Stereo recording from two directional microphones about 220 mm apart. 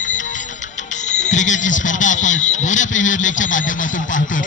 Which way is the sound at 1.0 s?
35° left (ahead or behind).